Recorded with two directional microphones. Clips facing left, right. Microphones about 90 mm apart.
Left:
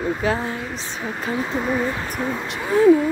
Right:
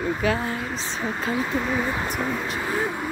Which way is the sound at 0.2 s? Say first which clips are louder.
Left 1 dB; 30° left (ahead or behind).